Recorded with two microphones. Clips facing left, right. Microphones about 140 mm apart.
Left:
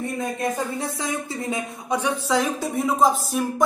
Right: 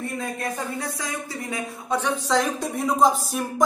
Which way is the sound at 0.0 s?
20° left (ahead or behind).